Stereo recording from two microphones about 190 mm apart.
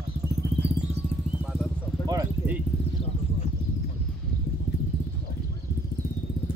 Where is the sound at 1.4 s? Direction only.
Centre (ahead or behind).